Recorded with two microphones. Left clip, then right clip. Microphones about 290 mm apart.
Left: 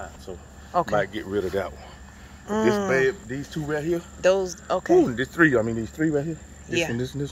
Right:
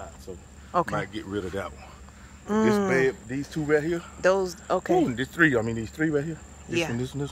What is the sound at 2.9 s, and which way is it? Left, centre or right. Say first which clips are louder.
Speech: left 2 dB; centre.